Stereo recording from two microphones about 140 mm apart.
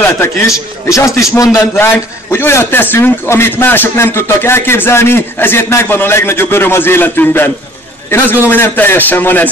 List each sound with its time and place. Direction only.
0.0 s a man's voice: 20° left (ahead or behind)